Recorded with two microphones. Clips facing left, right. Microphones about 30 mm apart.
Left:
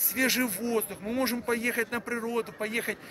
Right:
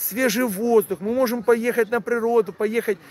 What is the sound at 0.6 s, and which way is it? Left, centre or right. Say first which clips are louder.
Speech: right 11 dB; left.